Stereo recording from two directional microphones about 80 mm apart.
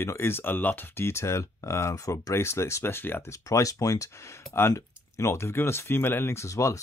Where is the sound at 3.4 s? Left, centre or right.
Left.